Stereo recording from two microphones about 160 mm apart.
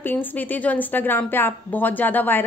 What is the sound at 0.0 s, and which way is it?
A woman's voice, 10° left (ahead or behind).